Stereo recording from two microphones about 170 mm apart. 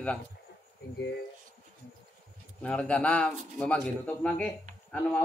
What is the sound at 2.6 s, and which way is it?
A man's voice, 5° left (ahead or behind).